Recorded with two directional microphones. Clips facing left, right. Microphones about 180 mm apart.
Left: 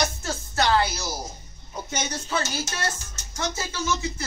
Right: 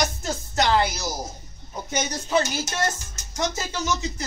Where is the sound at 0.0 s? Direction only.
15° right (ahead or behind).